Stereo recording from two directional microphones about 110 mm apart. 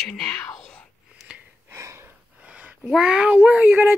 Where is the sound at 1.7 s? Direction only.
25° right (ahead or behind).